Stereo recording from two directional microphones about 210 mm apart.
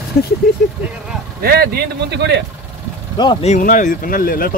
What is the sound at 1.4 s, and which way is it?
Speech, 45° right (ahead or behind).